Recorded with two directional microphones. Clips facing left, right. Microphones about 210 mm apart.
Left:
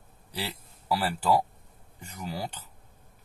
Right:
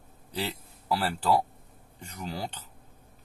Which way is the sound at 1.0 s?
10° left (ahead or behind).